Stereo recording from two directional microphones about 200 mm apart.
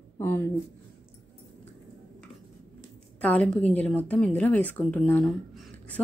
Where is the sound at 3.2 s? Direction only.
5° left (ahead or behind).